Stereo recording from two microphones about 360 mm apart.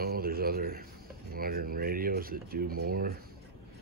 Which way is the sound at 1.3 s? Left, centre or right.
Right.